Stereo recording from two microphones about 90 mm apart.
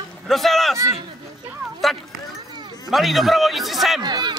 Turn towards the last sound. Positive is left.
turn(degrees=-55)  # may be behind; listen again after turning